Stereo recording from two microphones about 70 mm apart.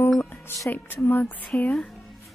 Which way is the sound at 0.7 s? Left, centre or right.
Left.